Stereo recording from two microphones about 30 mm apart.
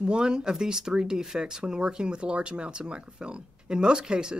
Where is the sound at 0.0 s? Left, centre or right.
Right.